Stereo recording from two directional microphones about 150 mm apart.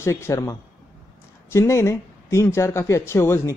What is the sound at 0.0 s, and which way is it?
Speech, 20° left (ahead or behind).